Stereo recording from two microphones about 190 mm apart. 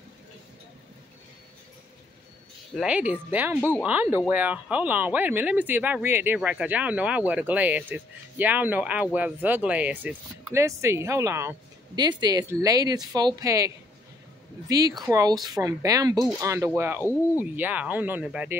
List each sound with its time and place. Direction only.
2.7 s speech: 5° right (ahead or behind)